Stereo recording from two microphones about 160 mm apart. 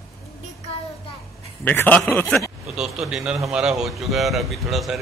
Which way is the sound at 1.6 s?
10° left (ahead or behind).